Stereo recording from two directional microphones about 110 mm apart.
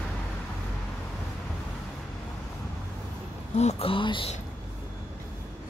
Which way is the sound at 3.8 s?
50° left (ahead or behind).